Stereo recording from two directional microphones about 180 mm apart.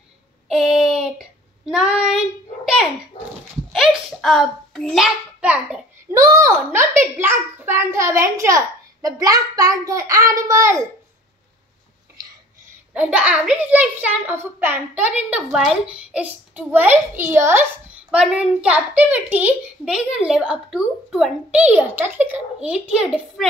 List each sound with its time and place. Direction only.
0.5 s child singing: centre (ahead or behind)
3.7 s hands: centre (ahead or behind)
6.1 s a child's voice: 15° right (ahead or behind)
12.9 s a child's voice: 10° right (ahead or behind)